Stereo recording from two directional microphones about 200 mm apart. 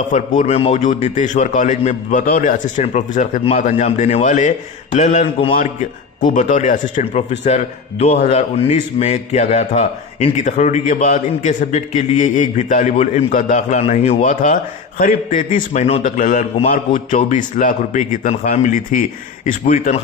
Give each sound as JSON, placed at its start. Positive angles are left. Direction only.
{"t": 0.4, "sound": "a man's voice", "side_deg": 30}